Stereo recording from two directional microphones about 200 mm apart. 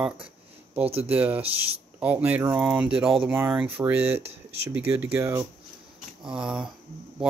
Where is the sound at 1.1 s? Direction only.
10° right (ahead or behind).